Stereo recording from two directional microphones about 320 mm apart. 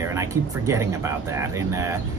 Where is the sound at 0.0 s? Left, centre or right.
Centre.